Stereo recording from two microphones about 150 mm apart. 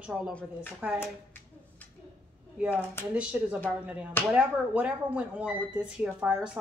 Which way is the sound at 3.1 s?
5° right (ahead or behind).